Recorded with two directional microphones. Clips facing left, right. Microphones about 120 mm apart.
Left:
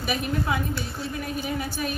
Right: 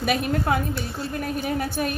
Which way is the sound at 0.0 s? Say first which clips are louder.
Right 4 dB; 60° right (ahead or behind).